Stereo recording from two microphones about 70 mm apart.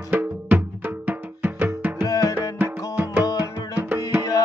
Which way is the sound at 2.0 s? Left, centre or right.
Left.